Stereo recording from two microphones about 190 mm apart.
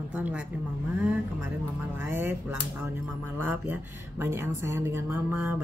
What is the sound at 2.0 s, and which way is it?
Speech, 10° right (ahead or behind).